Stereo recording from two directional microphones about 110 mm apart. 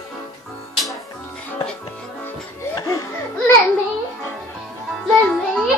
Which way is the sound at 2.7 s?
30° left (ahead or behind).